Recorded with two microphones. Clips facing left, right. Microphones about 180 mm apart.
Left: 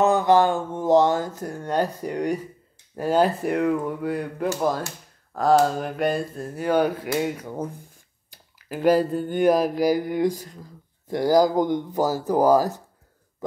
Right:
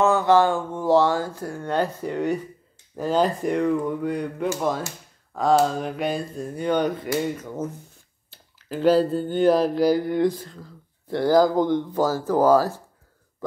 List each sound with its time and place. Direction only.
0.0 s speech: 15° left (ahead or behind)
8.3 s a sound: 10° left (ahead or behind)
11.1 s speech: 15° left (ahead or behind)